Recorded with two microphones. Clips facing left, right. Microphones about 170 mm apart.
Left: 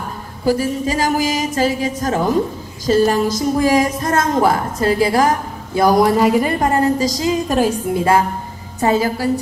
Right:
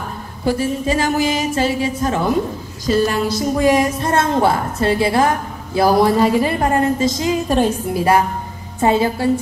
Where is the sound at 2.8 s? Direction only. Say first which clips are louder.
Left 2 dB; 40° left (ahead or behind).